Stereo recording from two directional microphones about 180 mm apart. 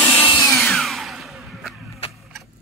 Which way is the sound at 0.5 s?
5° left (ahead or behind).